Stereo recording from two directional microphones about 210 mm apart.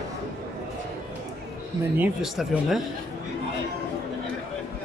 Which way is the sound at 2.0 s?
5° right (ahead or behind).